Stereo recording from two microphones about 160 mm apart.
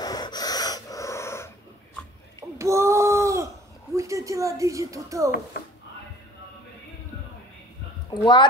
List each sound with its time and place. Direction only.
0.0 s dog: 25° left (ahead or behind)
2.6 s a sound: 20° right (ahead or behind)
8.1 s speech: 30° left (ahead or behind)